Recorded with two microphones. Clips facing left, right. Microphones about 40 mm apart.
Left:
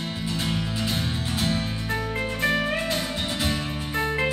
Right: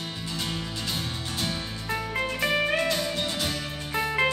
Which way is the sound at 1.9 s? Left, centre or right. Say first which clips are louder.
Right 1 dB; centre.